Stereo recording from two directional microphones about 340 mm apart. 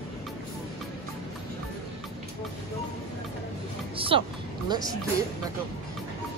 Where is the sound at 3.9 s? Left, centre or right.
Centre.